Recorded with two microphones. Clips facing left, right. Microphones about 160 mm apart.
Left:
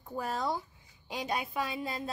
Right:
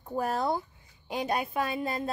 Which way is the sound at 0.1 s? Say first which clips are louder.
Right 5 dB; 50° right (ahead or behind).